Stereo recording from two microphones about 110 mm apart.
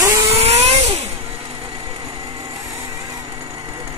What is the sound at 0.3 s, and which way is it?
Vehicle, 70° right (ahead or behind).